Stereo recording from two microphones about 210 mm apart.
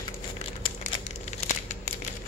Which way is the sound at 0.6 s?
35° left (ahead or behind).